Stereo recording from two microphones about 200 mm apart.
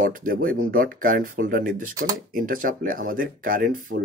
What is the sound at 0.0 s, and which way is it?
Speech, 45° right (ahead or behind).